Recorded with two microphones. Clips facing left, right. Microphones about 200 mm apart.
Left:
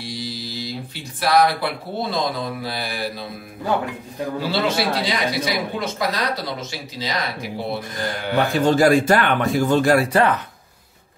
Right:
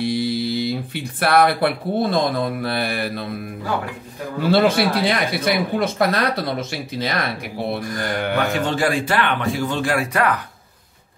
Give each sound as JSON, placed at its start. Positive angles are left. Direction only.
{"t": 0.0, "sound": "speech", "side_deg": -60}
{"t": 4.4, "sound": "speech", "side_deg": -55}
{"t": 8.5, "sound": "speech", "side_deg": 40}